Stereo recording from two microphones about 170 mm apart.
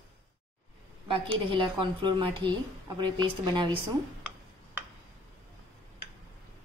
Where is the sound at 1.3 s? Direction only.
30° right (ahead or behind).